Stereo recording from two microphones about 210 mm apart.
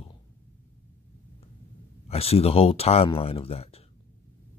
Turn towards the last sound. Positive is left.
turn(degrees=30)  # may be behind; listen again after turning